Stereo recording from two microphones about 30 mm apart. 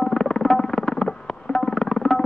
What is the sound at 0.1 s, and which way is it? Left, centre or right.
Music, centre.